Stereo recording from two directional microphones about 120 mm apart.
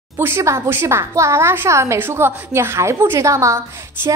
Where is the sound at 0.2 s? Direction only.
20° right (ahead or behind).